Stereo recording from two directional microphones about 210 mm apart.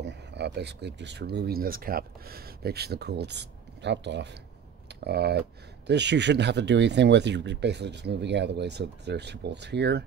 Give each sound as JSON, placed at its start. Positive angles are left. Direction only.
{"t": 0.0, "sound": "speech", "side_deg": -55}